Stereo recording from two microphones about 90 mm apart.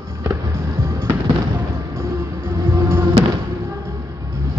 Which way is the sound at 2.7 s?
25° right (ahead or behind).